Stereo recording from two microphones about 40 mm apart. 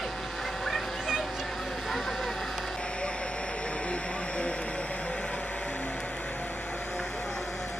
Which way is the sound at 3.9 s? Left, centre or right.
Left.